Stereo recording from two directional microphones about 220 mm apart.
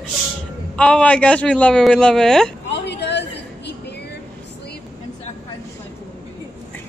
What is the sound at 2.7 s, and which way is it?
Chatter, 50° left (ahead or behind).